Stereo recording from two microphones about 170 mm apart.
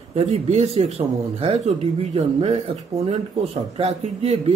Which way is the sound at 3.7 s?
40° right (ahead or behind).